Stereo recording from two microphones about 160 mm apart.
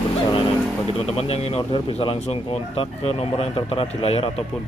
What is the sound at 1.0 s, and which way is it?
Speech, 40° left (ahead or behind).